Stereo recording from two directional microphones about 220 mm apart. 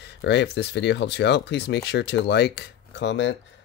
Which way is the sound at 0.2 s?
50° left (ahead or behind).